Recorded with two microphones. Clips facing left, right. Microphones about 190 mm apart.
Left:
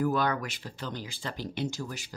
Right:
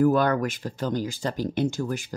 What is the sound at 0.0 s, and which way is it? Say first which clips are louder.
Speech: right 7 dB; 50° right (ahead or behind).